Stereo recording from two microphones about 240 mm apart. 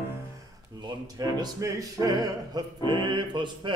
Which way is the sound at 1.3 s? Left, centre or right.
Centre.